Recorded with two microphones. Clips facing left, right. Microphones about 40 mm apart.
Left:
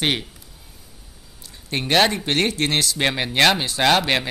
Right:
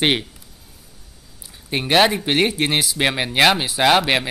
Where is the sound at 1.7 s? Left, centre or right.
Centre.